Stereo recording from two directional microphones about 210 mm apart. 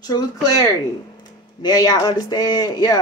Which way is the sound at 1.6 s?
20° left (ahead or behind).